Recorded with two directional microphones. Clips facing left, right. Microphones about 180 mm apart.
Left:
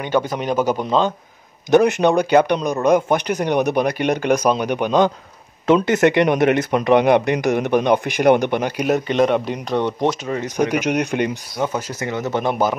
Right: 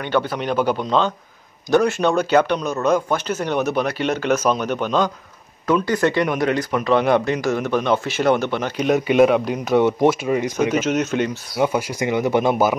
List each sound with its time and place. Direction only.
0.0 s a man's voice: 10° left (ahead or behind)
8.9 s speech: 5° right (ahead or behind)
10.6 s a man's voice: 15° left (ahead or behind)
11.5 s speech: 10° right (ahead or behind)